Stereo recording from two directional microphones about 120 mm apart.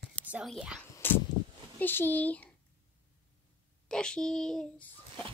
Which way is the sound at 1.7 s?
15° left (ahead or behind).